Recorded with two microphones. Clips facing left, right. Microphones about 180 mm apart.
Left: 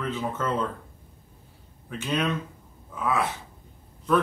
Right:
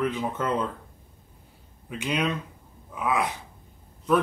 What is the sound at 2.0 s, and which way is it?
Speech, 15° right (ahead or behind).